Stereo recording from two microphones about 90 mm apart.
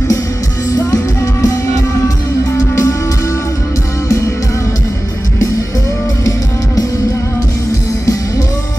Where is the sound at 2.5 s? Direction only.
30° left (ahead or behind).